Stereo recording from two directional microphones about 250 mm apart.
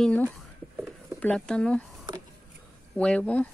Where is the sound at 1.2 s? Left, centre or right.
Centre.